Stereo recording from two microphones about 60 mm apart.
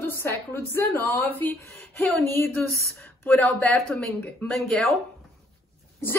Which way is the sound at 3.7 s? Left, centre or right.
Centre.